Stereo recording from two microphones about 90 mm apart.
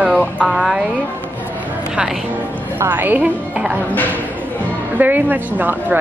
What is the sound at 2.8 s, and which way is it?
Speech, 25° right (ahead or behind).